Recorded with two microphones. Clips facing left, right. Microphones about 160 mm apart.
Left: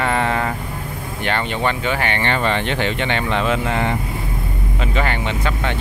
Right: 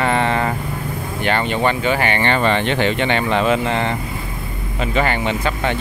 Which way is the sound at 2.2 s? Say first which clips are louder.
Right 3 dB; 60° right (ahead or behind).